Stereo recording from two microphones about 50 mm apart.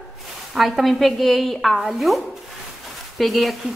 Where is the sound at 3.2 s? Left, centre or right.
Centre.